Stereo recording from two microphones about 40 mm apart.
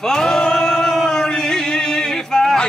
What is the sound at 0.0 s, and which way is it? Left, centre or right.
Music, centre.